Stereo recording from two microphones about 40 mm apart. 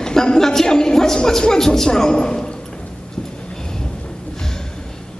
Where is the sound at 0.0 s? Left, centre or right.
Centre.